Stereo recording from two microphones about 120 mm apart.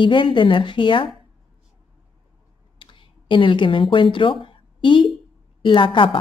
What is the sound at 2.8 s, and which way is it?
A woman's voice, 45° left (ahead or behind).